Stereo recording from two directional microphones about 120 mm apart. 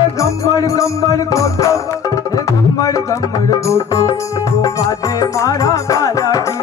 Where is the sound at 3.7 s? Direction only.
25° left (ahead or behind).